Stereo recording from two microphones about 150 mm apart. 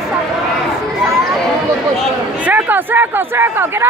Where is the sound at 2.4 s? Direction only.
10° right (ahead or behind).